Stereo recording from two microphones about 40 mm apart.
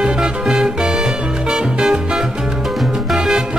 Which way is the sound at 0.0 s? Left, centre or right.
Right.